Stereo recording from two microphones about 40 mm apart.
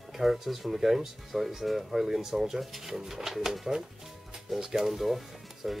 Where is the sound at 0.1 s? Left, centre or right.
Centre.